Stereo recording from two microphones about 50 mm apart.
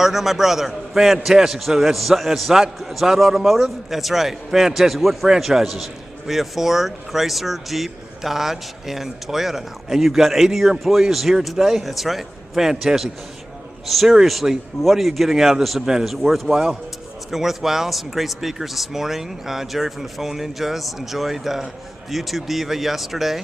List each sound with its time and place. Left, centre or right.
0.0 s a man's voice: centre